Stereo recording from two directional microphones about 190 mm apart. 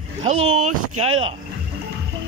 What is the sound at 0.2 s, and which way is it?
Speech, 30° right (ahead or behind).